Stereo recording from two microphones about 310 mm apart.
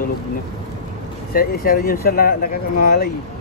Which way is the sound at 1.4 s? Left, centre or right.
Left.